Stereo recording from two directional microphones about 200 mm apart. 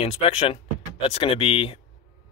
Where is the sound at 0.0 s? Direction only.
30° left (ahead or behind).